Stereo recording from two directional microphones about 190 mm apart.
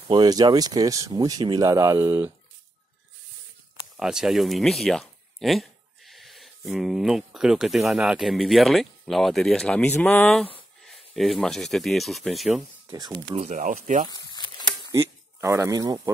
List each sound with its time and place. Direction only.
0.1 s speech: 20° right (ahead or behind)
3.9 s speech: 5° right (ahead or behind)
12.9 s speech: 20° right (ahead or behind)
13.4 s speech: 40° right (ahead or behind)
14.1 s crumpling: 20° left (ahead or behind)
14.9 s speech: 15° right (ahead or behind)